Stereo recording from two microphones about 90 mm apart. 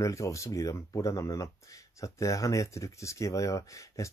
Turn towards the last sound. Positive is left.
turn(degrees=35)  # may be behind; listen again after turning